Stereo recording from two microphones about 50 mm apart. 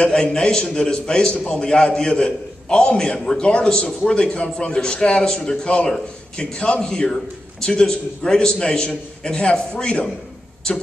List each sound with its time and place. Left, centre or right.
0.0 s a man's voice: centre